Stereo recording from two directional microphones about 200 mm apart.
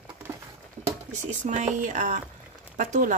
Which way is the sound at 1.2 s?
35° right (ahead or behind).